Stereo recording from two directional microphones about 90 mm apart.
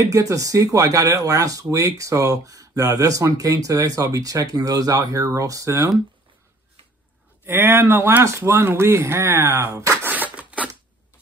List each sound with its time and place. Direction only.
0.1 s speech: 40° right (ahead or behind)
7.4 s speech: 25° right (ahead or behind)
10.0 s a sound: 20° right (ahead or behind)